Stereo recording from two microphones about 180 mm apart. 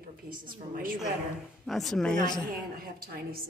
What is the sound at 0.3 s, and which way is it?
Speech, 50° right (ahead or behind).